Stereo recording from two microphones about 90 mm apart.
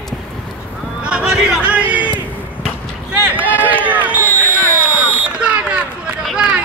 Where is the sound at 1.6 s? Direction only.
15° right (ahead or behind).